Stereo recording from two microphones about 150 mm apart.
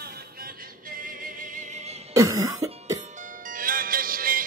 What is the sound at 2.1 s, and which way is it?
Cough, 25° right (ahead or behind).